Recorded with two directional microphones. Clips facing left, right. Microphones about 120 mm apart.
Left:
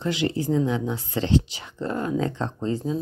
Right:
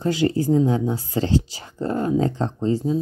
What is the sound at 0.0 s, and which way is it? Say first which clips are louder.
Speech: right 5 dB; 40° right (ahead or behind).